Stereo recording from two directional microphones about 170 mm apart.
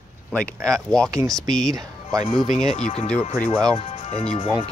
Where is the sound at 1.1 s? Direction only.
20° right (ahead or behind).